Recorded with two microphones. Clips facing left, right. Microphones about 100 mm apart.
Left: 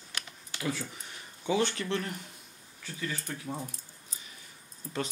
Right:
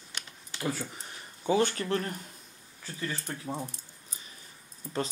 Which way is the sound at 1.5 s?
40° right (ahead or behind).